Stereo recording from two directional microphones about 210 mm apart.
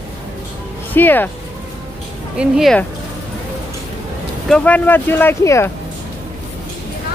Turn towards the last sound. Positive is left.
turn(degrees=10)  # may be behind; listen again after turning